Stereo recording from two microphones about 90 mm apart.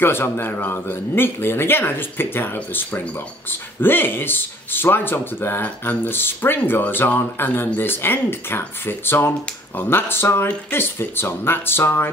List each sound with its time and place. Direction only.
0.0 s speech: 25° left (ahead or behind)